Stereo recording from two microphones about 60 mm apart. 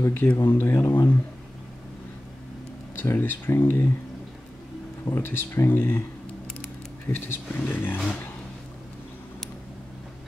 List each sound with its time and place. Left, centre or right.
0.0 s speech: left
3.0 s speech: left
5.0 s speech: left
7.1 s speech: left
7.6 s speech: left